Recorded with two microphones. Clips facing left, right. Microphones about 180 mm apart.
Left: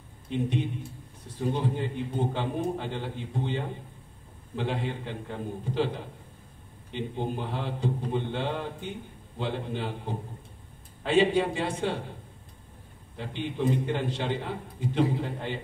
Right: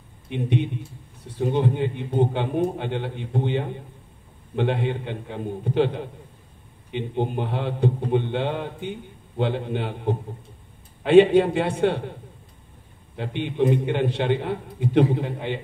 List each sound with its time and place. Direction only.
0.3 s a man's voice: 65° right (ahead or behind)
13.1 s a man's voice: 60° right (ahead or behind)